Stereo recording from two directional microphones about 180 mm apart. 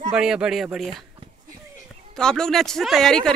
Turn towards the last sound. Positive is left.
turn(degrees=5)  # may be behind; listen again after turning